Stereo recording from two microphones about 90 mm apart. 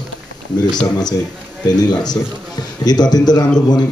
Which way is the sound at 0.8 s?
50° left (ahead or behind).